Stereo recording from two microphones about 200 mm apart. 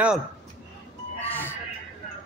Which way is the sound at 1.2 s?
10° left (ahead or behind).